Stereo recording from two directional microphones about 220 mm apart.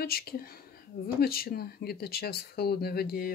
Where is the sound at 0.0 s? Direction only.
45° left (ahead or behind).